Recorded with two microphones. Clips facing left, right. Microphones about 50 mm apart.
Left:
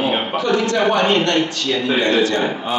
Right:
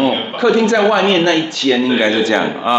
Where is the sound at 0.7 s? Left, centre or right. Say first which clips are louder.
Right 4 dB; right.